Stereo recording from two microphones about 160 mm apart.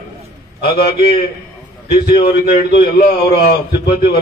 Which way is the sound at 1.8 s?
75° left (ahead or behind).